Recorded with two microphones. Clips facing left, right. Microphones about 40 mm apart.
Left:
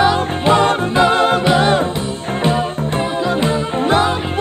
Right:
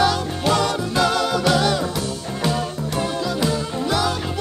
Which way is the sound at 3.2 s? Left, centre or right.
Left.